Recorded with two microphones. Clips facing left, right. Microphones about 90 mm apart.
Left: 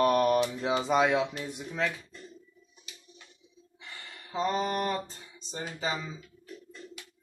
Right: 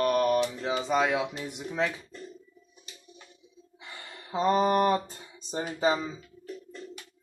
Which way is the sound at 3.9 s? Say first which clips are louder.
Right 3 dB; 40° right (ahead or behind).